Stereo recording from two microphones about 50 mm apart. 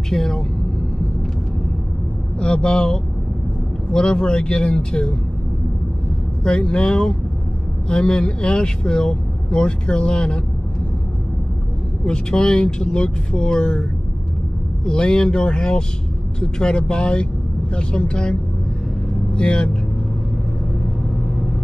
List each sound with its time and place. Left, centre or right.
0.1 s vehicle: centre
2.3 s speech: centre
6.4 s speech: centre
12.0 s speech: centre
14.9 s speech: centre